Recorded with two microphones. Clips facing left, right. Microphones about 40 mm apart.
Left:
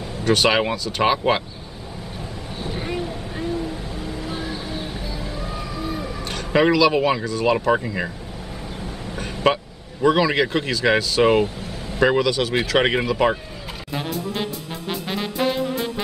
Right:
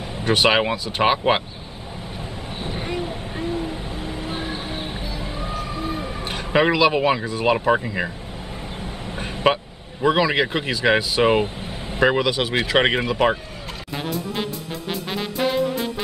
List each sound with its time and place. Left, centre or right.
0.2 s speech: centre
2.7 s vehicle: centre
3.3 s music: right
5.1 s a sound: right
7.7 s speech: centre
8.8 s vehicle: right
10.0 s speech: centre
11.4 s vehicle: right
12.0 s speech: centre
14.9 s music: centre